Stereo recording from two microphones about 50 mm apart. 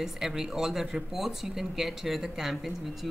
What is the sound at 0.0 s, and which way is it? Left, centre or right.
Speech, centre.